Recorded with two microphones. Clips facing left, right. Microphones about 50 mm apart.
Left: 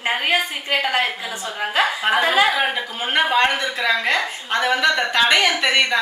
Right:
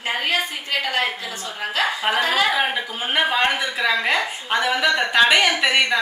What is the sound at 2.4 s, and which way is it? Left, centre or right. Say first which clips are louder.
A woman's voice: left 1 dB; centre.